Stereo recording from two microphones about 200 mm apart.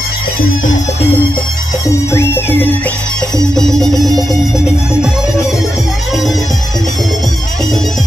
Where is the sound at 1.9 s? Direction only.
15° left (ahead or behind).